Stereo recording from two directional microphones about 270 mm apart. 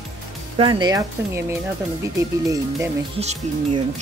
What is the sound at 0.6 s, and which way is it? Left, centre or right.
Speech, centre.